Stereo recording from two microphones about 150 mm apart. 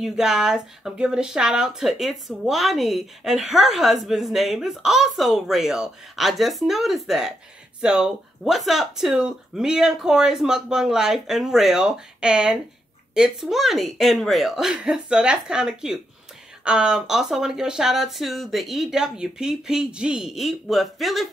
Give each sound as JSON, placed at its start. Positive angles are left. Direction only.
{"t": 0.0, "sound": "speech", "side_deg": -5}